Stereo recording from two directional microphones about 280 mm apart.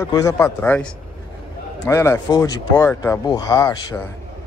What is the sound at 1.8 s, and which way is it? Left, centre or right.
Speech, centre.